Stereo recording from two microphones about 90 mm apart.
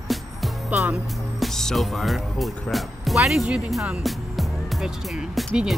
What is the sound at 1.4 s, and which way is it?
Speech, 5° left (ahead or behind).